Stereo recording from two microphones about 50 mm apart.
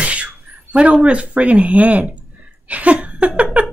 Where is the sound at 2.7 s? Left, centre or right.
Right.